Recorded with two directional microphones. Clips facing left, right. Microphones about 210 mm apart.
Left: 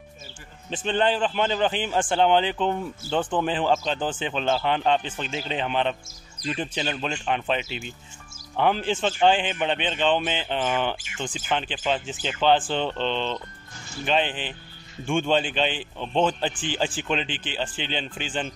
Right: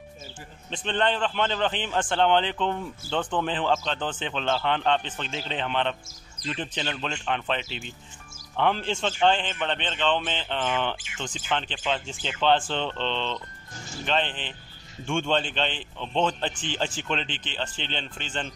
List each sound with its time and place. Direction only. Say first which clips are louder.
0.7 s a man's voice: left 3 dB; 5° left (ahead or behind)